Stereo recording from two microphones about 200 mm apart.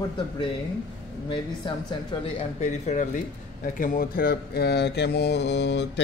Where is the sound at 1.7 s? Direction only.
25° left (ahead or behind).